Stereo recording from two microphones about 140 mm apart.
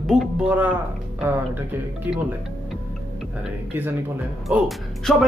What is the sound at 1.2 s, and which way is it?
Speech, 15° right (ahead or behind).